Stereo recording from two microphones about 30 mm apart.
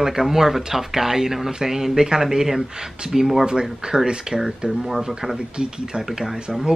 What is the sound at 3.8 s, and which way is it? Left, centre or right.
Speech, right.